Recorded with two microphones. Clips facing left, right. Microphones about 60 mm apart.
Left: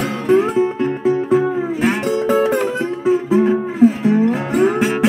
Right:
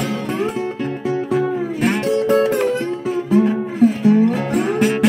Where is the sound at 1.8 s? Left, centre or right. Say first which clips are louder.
Right 2 dB; centre.